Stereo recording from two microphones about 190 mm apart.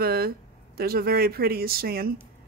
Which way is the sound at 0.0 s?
55° right (ahead or behind).